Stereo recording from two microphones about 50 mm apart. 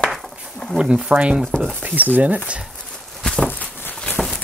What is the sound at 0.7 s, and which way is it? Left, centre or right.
Speech, centre.